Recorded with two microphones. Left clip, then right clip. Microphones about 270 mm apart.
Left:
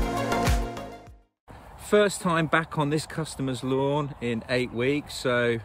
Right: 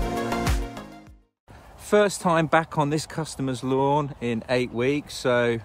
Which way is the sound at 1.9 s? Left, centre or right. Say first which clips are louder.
Right 2 dB; centre.